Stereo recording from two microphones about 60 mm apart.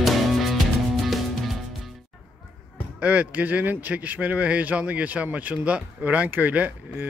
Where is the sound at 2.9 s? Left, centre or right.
Right.